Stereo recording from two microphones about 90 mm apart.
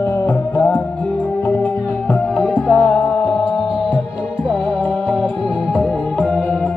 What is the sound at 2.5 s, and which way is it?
Music, 5° right (ahead or behind).